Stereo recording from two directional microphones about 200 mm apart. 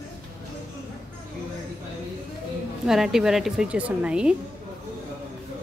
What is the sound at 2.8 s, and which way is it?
A woman's voice, centre (ahead or behind).